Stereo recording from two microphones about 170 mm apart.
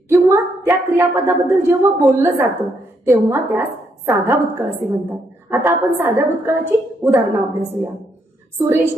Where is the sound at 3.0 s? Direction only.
15° right (ahead or behind).